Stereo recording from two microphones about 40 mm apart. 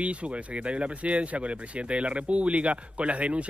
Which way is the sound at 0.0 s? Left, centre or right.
Right.